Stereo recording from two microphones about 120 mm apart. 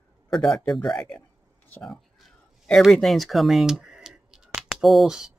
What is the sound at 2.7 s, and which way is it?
Speech, centre (ahead or behind).